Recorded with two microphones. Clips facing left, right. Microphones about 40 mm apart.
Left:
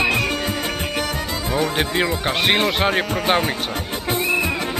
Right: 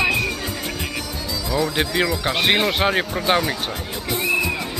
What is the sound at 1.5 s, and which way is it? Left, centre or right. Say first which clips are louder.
Speech: even; left.